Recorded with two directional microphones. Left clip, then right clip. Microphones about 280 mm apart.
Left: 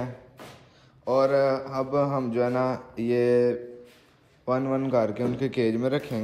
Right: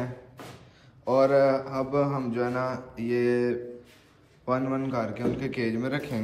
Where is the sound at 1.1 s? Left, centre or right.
Centre.